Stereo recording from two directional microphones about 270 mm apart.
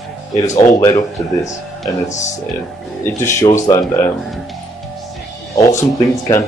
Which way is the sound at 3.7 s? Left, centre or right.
Centre.